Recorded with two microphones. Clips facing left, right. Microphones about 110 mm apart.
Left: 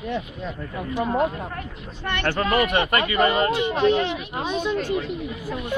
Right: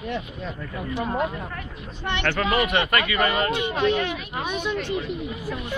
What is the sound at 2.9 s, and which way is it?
A woman's voice, 30° left (ahead or behind).